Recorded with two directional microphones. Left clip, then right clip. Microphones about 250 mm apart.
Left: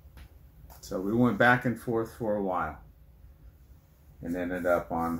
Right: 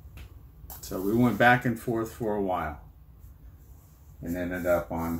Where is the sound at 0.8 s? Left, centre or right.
Centre.